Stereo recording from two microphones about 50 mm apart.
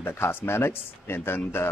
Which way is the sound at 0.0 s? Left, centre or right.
Left.